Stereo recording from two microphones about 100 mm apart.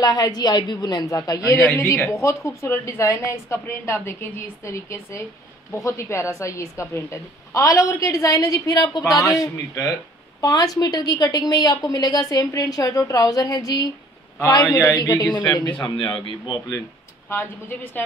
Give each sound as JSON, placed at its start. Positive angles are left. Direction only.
{"t": 0.0, "sound": "a woman's voice", "side_deg": 40}
{"t": 17.3, "sound": "a woman's voice", "side_deg": 20}